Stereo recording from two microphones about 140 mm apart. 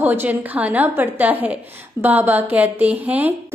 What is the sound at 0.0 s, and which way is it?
A woman's voice, 15° right (ahead or behind).